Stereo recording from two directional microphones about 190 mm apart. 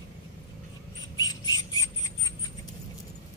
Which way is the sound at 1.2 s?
20° left (ahead or behind).